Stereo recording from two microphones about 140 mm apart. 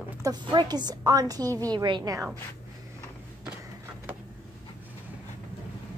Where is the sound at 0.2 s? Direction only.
30° right (ahead or behind).